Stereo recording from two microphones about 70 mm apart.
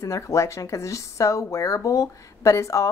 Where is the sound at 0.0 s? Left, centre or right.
Left.